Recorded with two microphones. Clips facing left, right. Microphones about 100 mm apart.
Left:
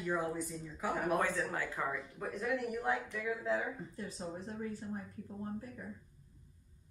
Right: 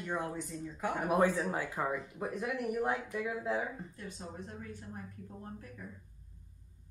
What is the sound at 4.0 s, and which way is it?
Speech, 35° left (ahead or behind).